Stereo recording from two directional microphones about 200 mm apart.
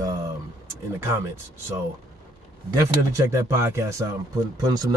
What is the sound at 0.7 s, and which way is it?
Speech, 15° right (ahead or behind).